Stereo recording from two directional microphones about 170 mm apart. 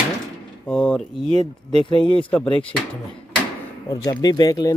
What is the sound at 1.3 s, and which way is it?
Speech, 30° left (ahead or behind).